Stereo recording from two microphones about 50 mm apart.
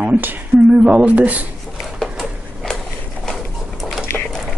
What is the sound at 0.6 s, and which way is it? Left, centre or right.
Speech, right.